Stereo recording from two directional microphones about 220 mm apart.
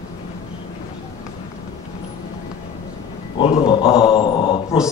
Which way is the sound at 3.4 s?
20° left (ahead or behind).